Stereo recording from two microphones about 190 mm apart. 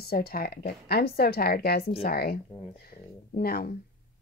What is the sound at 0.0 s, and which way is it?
Speech, 55° left (ahead or behind).